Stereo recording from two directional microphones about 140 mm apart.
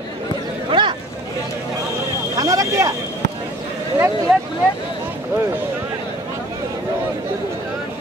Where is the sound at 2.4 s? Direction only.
25° right (ahead or behind).